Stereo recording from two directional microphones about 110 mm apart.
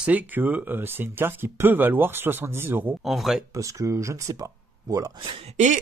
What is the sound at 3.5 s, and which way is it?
Speech, 30° right (ahead or behind).